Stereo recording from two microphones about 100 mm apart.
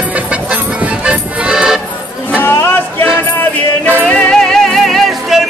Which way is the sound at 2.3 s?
25° left (ahead or behind).